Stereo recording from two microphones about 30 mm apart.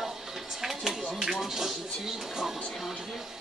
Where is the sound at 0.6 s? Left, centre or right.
Centre.